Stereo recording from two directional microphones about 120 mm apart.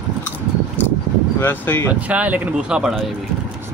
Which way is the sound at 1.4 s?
20° left (ahead or behind).